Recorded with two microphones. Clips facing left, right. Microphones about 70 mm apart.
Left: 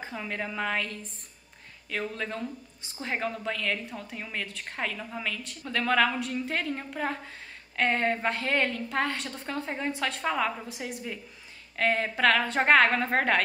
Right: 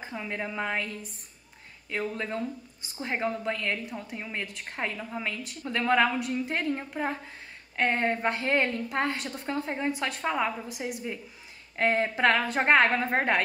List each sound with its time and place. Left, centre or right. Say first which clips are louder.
0.0 s a sound: even; centre
0.3 s a woman's voice: left 1 dB; centre
1.9 s a woman's voice: right 1 dB; centre